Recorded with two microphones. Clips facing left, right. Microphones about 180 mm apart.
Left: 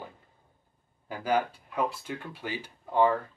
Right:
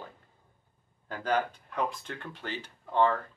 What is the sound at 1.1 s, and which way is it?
Speech, 10° left (ahead or behind).